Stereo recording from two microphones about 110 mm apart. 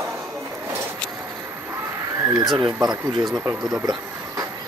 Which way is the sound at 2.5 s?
40° right (ahead or behind).